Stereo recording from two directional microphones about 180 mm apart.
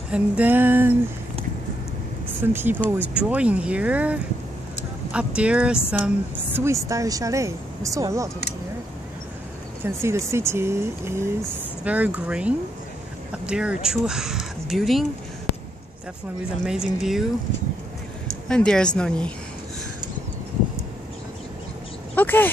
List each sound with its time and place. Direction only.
0.1 s a woman's voice: 10° right (ahead or behind)
2.4 s a woman's voice: 10° right (ahead or behind)
9.8 s a woman's voice: 15° right (ahead or behind)
16.6 s speech: 5° right (ahead or behind)
18.5 s speech: 5° left (ahead or behind)
22.1 s speech: 10° left (ahead or behind)